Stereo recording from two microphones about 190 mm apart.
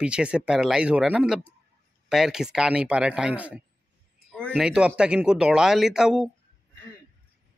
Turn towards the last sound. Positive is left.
turn(degrees=-5)  # may be behind; listen again after turning